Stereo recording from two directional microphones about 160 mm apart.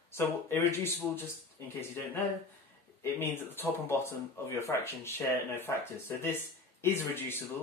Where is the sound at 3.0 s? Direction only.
15° left (ahead or behind).